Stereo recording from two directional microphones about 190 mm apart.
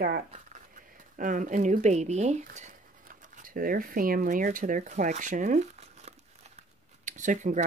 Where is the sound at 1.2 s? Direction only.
45° right (ahead or behind).